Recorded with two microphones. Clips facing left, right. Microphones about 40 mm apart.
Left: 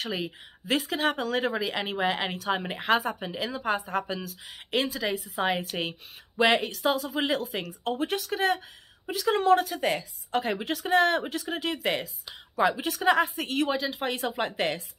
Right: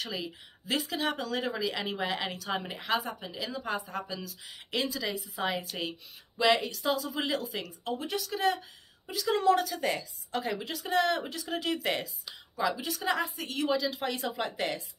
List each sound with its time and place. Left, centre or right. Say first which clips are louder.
0.0 s speech: left 4 dB; left
1.5 s a woman's voice: left 3 dB; left
11.4 s a woman's voice: left 2 dB; left
12.5 s speech: left 6 dB; left
13.7 s speech: left 1 dB; left